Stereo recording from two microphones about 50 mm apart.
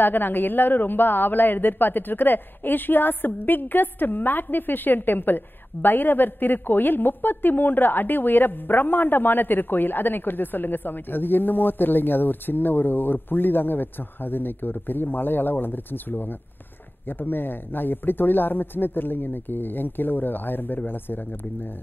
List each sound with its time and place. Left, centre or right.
0.0 s a woman's voice: left